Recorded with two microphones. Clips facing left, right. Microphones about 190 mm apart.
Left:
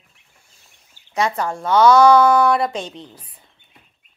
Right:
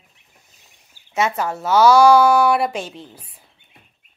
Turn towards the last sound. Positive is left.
turn(degrees=-5)  # may be behind; listen again after turning